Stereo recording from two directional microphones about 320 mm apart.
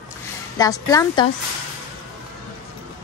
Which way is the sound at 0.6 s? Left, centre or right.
Centre.